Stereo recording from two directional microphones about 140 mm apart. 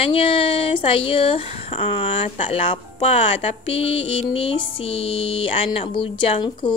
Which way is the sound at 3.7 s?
45° left (ahead or behind).